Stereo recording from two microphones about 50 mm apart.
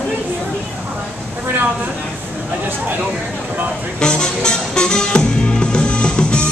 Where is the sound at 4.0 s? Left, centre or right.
Centre.